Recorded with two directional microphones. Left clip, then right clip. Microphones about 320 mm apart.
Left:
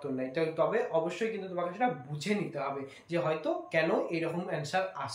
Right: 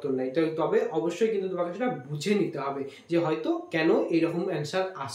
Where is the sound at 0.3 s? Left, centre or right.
Centre.